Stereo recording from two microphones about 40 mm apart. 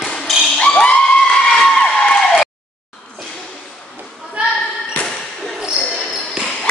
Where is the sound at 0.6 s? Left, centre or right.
Left.